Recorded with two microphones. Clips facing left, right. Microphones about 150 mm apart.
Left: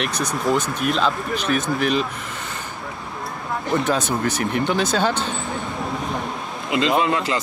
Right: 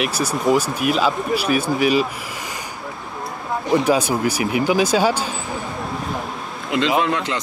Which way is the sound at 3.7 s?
10° right (ahead or behind).